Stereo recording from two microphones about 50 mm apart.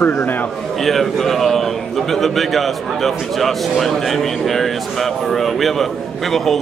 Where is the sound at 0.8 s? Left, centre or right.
Centre.